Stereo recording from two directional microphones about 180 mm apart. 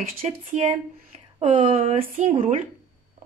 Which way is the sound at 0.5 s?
35° right (ahead or behind).